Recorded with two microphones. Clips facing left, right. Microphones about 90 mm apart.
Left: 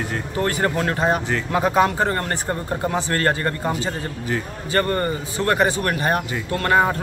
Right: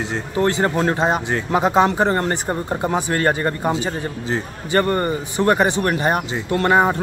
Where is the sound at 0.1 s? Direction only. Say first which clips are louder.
Right 6 dB; 25° right (ahead or behind).